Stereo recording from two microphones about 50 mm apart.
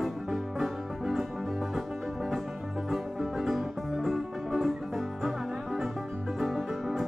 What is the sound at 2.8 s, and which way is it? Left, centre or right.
Music, centre.